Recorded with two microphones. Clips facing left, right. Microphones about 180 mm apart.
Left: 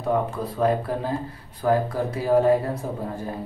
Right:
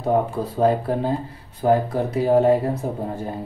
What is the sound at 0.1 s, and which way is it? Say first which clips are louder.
Speech: right 4 dB; 30° right (ahead or behind).